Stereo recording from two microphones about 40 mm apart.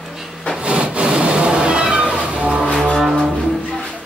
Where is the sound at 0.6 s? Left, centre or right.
Right.